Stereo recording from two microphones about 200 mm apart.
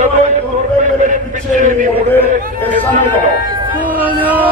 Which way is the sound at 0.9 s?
40° right (ahead or behind).